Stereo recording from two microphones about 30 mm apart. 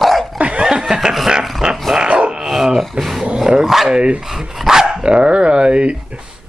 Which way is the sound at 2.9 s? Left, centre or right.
Centre.